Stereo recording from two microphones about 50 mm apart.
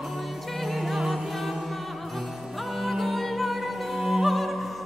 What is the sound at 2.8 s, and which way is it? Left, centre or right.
Opera, centre.